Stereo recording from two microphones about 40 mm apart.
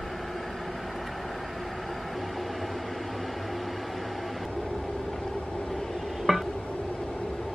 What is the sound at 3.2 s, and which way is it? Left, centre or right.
Microwave oven, centre.